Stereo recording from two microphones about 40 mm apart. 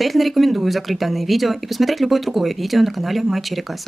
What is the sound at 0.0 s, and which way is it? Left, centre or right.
Speech, centre.